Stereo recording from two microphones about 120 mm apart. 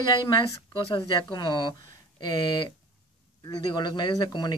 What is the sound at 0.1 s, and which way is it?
Speech, 40° left (ahead or behind).